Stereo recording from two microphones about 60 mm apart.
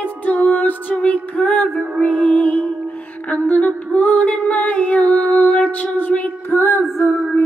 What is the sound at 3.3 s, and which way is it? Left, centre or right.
Music, left.